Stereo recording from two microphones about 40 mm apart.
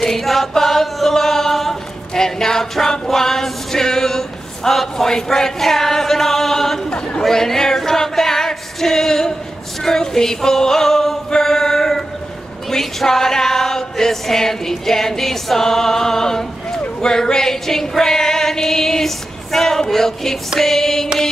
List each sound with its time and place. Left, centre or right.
0.0 s a capella: centre
2.1 s male singing: centre
6.9 s chatter: left
7.2 s female singing: centre
9.8 s singing: centre
11.2 s choir: centre
12.6 s chant: centre
17.0 s female singing: centre